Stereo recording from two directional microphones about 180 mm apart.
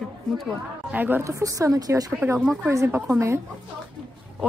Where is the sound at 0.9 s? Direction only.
10° right (ahead or behind).